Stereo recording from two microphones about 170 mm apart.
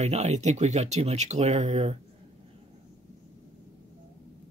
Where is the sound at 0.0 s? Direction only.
40° right (ahead or behind).